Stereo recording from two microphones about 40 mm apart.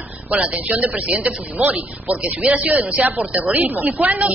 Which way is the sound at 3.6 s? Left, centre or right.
Right.